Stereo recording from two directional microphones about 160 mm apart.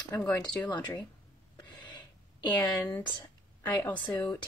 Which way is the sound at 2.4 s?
25° left (ahead or behind).